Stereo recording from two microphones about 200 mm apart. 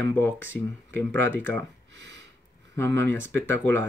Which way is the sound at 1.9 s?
60° right (ahead or behind).